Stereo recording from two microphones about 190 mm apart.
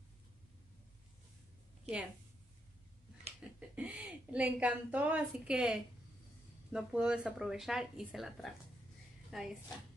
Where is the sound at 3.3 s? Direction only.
35° right (ahead or behind).